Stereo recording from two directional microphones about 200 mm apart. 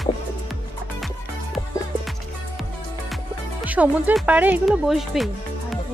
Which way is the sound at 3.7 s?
5° right (ahead or behind).